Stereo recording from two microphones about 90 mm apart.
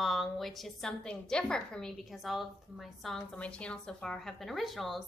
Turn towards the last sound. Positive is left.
turn(degrees=0)  # may be behind; listen again after turning